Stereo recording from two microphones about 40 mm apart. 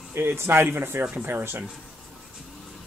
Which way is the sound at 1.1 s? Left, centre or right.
Right.